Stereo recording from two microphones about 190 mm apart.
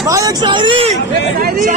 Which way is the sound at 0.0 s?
20° right (ahead or behind).